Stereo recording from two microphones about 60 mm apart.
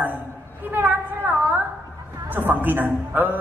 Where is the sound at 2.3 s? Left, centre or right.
Right.